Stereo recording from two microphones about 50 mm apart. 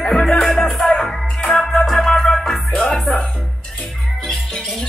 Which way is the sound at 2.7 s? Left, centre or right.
Centre.